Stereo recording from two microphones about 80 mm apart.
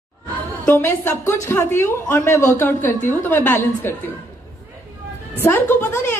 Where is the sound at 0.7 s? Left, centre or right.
Left.